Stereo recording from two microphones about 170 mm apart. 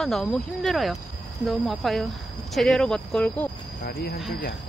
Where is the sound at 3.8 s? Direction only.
65° left (ahead or behind).